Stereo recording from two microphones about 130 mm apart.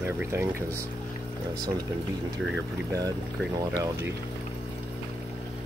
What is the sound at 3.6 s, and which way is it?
Speech, 25° right (ahead or behind).